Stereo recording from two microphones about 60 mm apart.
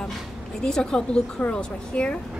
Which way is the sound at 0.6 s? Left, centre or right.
Centre.